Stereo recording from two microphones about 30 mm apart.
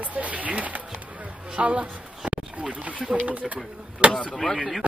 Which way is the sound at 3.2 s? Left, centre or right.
Right.